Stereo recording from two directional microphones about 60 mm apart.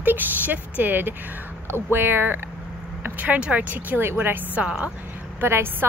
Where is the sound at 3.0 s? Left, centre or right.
Right.